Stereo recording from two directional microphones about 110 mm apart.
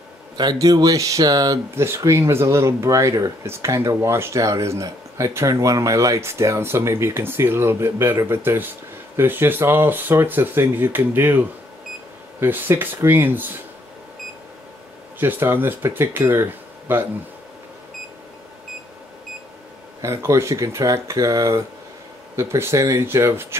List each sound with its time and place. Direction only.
0.4 s speech: 35° right (ahead or behind)
1.8 s speech: 25° right (ahead or behind)
15.1 s speech: 20° right (ahead or behind)
20.0 s speech: 25° right (ahead or behind)